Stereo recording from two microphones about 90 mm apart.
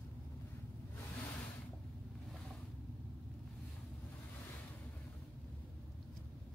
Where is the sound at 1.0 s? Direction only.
30° left (ahead or behind).